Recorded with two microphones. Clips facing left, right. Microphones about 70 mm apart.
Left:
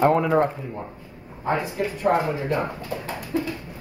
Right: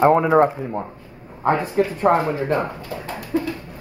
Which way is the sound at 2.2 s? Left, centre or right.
Right.